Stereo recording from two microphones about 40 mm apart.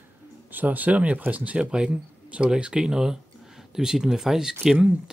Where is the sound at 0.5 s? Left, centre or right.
Right.